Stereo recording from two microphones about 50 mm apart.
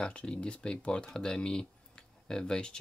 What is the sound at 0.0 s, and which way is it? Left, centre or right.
Speech, left.